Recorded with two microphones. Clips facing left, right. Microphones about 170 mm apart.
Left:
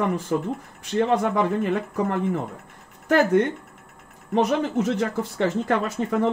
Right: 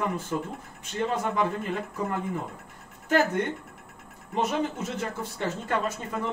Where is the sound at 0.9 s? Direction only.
70° left (ahead or behind).